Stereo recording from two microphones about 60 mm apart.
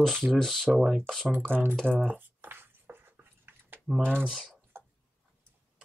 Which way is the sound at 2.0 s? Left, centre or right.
Right.